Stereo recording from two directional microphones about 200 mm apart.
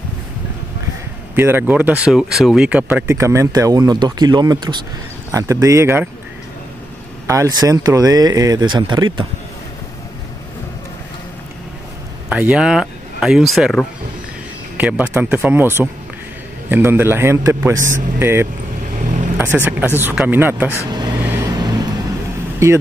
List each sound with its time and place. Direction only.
1.3 s speech: 10° right (ahead or behind)
7.2 s speech: 15° right (ahead or behind)
12.3 s speech: 5° right (ahead or behind)
18.9 s vehicle: 35° right (ahead or behind)
19.3 s speech: 10° right (ahead or behind)
21.3 s vehicle: 15° right (ahead or behind)